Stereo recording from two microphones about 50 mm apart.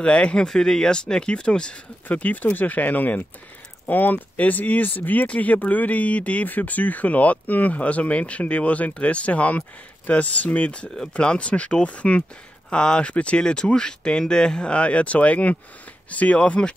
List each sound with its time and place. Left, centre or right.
0.0 s speech: left
2.0 s speech: left